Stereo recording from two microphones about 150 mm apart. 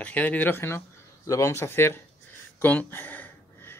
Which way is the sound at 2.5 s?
10° left (ahead or behind).